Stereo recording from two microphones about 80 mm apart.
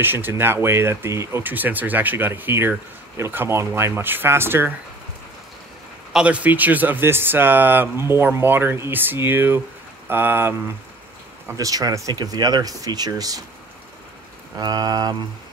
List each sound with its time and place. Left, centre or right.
0.0 s speech: right
1.4 s speech: right
6.1 s speech: centre
11.5 s speech: right
14.6 s speech: right